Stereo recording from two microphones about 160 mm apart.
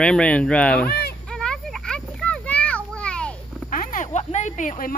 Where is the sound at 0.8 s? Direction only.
80° left.